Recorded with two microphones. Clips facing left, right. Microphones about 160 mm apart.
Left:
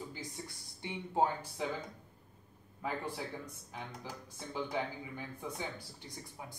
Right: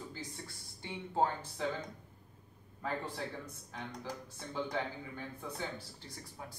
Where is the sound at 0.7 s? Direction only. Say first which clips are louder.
Left 1 dB; 15° left (ahead or behind).